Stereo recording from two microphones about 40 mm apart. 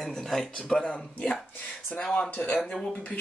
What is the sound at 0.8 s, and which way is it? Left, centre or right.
Speech, left.